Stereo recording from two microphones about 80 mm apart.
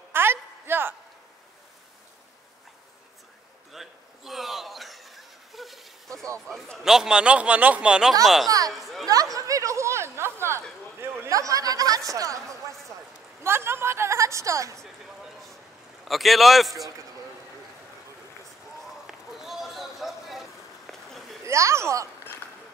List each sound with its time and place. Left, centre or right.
0.1 s a sound: right
3.7 s a sound: centre
6.4 s a man's voice: centre
6.8 s a man's voice: centre
8.5 s speech: right
8.7 s chatter: centre
9.0 s a sound: right
11.0 s speech: right
13.4 s a sound: right
16.1 s a man's voice: centre
19.0 s vehicle: centre
21.5 s speech: right